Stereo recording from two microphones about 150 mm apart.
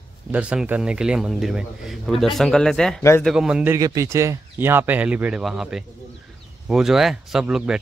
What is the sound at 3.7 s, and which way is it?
A man's voice, 20° right (ahead or behind).